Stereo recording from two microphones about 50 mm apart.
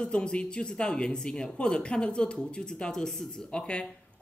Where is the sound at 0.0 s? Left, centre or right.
Centre.